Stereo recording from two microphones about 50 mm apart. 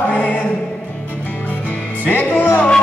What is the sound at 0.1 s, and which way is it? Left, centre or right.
Music, left.